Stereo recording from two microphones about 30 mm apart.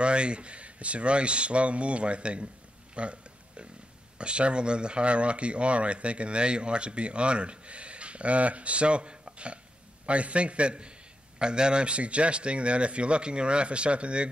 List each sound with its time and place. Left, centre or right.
0.0 s speech: right